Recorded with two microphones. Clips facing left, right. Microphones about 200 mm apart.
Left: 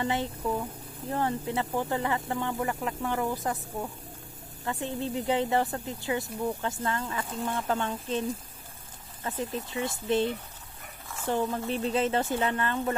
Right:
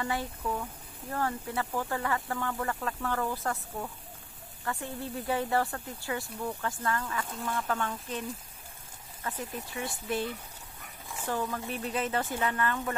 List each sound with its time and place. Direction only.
0.0 s speech: 20° left (ahead or behind)